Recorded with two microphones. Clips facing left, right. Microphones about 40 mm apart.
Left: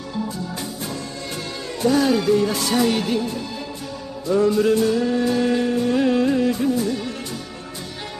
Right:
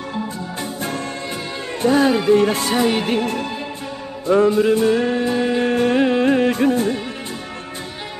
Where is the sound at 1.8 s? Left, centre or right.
Right.